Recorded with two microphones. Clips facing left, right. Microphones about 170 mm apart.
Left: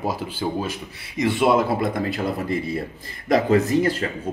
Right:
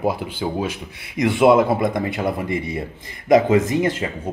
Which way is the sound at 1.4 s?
20° right (ahead or behind).